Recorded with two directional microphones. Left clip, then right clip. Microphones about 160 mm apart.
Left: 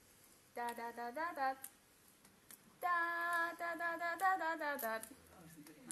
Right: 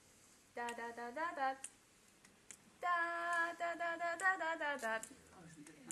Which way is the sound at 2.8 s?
10° right (ahead or behind).